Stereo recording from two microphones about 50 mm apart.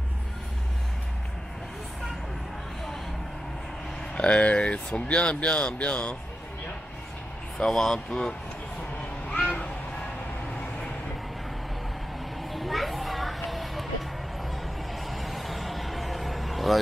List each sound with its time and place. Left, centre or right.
4.1 s speech: left
7.5 s speech: centre
9.3 s cat: left
12.4 s children playing: centre
14.5 s a sound: centre